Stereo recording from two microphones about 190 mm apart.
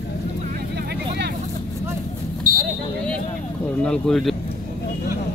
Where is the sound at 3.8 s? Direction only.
5° left (ahead or behind).